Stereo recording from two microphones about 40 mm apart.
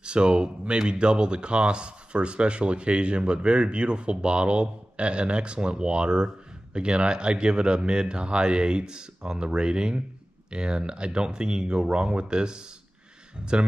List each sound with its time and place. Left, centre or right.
0.0 s speech: right